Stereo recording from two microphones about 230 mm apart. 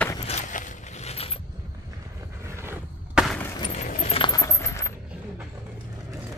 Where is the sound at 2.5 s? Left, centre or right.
Centre.